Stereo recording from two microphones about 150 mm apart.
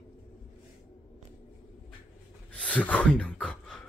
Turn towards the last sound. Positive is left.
turn(degrees=5)  # may be behind; listen again after turning